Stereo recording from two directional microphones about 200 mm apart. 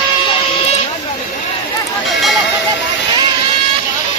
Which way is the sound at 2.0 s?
Centre (ahead or behind).